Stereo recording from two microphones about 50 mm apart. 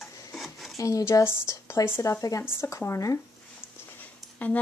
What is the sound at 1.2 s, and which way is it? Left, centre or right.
Speech, left.